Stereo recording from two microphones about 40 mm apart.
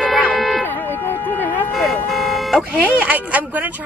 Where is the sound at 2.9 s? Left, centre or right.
Right.